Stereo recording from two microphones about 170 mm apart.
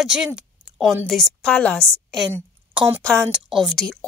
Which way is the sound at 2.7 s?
30° right (ahead or behind).